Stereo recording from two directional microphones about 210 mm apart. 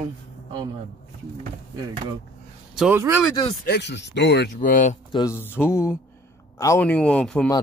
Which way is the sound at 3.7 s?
55° left (ahead or behind).